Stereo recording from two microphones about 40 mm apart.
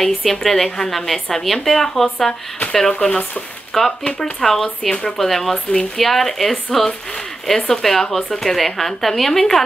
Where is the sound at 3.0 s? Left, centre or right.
Left.